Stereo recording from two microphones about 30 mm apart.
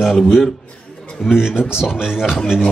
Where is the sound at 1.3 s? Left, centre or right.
Centre.